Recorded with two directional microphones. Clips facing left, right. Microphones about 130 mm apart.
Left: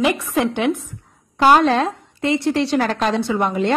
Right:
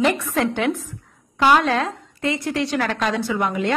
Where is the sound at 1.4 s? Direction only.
35° left (ahead or behind).